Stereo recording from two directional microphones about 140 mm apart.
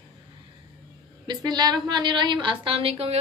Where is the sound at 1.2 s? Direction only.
30° right (ahead or behind).